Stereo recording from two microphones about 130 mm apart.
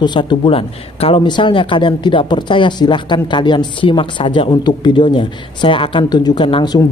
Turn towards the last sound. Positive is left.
turn(degrees=35)  # may be behind; listen again after turning